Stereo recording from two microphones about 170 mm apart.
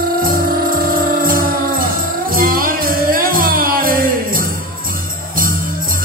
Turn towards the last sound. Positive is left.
turn(degrees=-55)  # may be behind; listen again after turning